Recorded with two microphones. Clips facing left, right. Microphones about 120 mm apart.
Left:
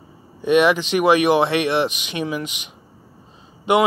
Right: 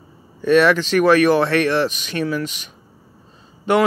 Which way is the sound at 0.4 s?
15° left (ahead or behind).